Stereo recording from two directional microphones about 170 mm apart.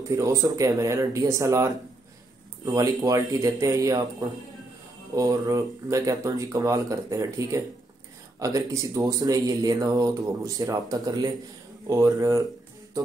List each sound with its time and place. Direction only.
0.1 s speech: 20° right (ahead or behind)
5.1 s speech: 20° right (ahead or behind)